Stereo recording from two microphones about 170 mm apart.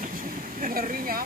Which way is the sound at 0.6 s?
55° right (ahead or behind).